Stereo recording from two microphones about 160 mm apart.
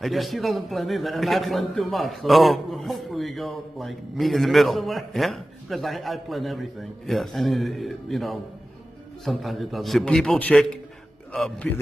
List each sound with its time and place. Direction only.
0.0 s a man's voice: centre (ahead or behind)